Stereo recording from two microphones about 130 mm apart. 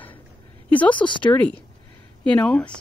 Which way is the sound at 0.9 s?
35° left (ahead or behind).